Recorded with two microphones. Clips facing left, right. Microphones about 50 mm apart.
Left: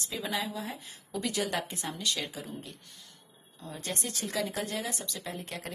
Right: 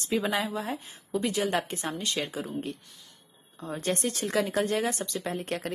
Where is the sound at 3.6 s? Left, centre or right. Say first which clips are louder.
Right 8 dB; right.